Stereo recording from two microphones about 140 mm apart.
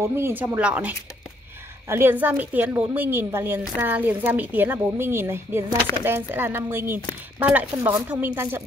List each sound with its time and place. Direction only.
0.0 s speech: 20° right (ahead or behind)